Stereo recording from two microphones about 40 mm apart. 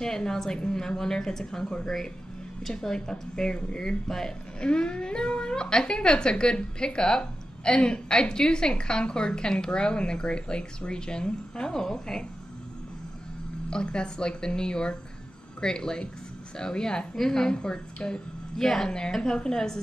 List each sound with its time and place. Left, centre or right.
0.0 s speech: centre
13.7 s speech: left